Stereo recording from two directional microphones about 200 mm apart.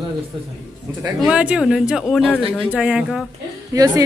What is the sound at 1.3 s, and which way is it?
A woman's voice, 5° right (ahead or behind).